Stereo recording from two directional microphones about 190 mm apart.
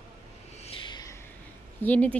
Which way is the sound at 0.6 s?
25° left (ahead or behind).